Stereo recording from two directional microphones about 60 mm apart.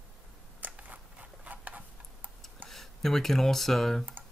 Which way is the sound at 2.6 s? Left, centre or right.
Centre.